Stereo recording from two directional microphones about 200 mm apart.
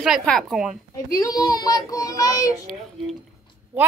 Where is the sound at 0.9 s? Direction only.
15° left (ahead or behind).